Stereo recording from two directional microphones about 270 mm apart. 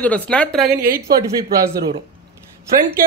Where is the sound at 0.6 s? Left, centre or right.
Right.